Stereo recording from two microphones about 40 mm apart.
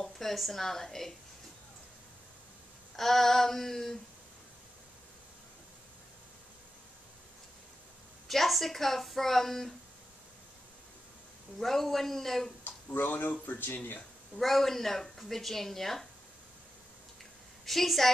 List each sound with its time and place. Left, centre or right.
0.0 s a woman's voice: centre
3.0 s speech: centre
8.3 s a woman's voice: centre
11.6 s speech: centre
12.6 s a sound: left
14.4 s speech: centre
17.6 s a woman's voice: centre